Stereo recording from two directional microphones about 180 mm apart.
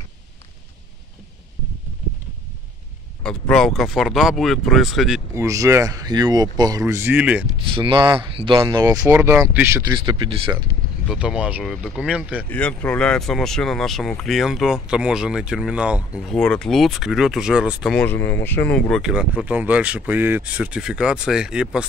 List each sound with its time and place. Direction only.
3.3 s speech: 5° left (ahead or behind)
5.3 s speech: 15° right (ahead or behind)
7.7 s speech: 30° right (ahead or behind)
9.9 s speech: 25° right (ahead or behind)
11.1 s speech: 5° right (ahead or behind)
12.4 s speech: 5° left (ahead or behind)
17.9 s speech: 10° left (ahead or behind); by 21.8 s 5° right (ahead or behind)